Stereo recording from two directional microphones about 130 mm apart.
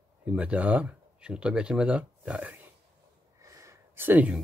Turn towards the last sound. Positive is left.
turn(degrees=-10)  # may be behind; listen again after turning